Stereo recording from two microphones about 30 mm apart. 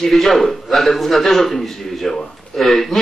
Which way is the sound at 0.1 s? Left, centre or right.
Centre.